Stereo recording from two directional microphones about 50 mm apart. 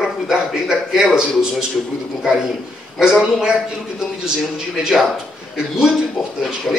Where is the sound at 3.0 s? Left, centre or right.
Centre.